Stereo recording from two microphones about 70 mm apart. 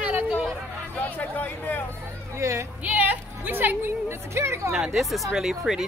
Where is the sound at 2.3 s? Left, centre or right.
Right.